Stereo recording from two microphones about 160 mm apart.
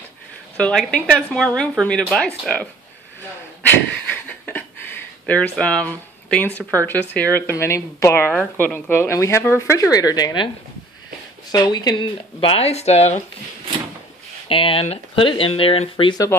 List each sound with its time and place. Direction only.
0.6 s a woman's voice: 5° left (ahead or behind)
3.6 s a sound: 10° left (ahead or behind)
6.7 s speech: 10° left (ahead or behind); by 10.5 s 30° left (ahead or behind)
11.5 s speech: 25° left (ahead or behind); by 13.2 s 45° left (ahead or behind)
14.5 s speech: 35° left (ahead or behind)